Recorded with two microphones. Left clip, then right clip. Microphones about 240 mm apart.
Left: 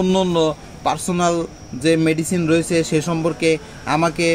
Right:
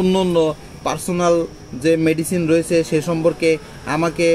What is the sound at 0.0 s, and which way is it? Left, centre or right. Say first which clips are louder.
A man's voice: right 1 dB; left.